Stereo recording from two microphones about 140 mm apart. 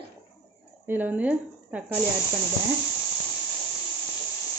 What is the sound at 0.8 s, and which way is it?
Speech, 15° right (ahead or behind).